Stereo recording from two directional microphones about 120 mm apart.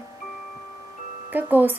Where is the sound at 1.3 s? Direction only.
15° right (ahead or behind).